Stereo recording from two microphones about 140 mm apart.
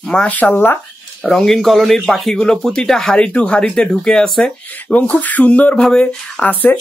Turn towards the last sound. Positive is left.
turn(degrees=10)  # may be behind; listen again after turning